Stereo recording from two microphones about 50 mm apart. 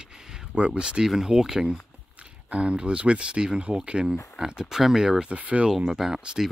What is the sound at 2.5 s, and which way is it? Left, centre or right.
Speech, right.